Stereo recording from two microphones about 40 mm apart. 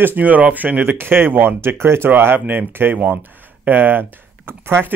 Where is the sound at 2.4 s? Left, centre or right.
Right.